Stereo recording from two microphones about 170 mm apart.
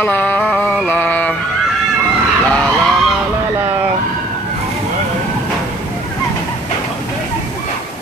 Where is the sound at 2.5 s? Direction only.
5° left (ahead or behind).